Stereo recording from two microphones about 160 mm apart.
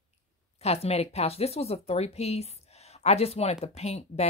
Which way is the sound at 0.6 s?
40° left (ahead or behind).